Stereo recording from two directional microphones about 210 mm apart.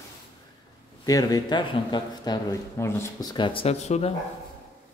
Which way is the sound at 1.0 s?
15° left (ahead or behind).